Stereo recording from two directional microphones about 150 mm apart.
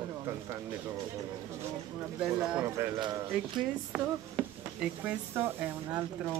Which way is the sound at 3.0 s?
30° right (ahead or behind).